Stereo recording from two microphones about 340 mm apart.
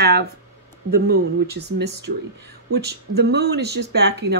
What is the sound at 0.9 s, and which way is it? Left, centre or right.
Speech, right.